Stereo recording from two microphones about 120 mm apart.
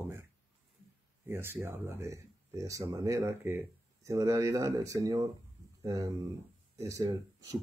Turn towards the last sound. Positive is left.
turn(degrees=-30)  # may be behind; listen again after turning